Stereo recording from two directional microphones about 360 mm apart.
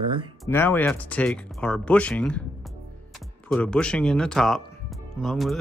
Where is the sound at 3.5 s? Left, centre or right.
Centre.